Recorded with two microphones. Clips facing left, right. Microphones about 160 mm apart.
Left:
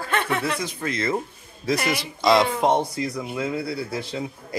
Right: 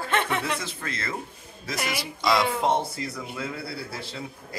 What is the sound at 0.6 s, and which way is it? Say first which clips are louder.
Speech: left 7 dB; 15° left (ahead or behind).